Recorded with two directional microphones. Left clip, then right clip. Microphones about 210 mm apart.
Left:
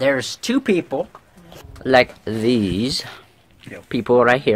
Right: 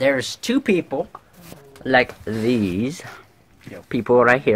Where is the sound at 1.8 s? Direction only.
30° left (ahead or behind).